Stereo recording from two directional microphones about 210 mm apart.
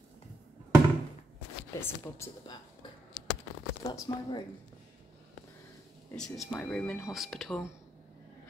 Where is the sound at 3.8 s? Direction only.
20° left (ahead or behind).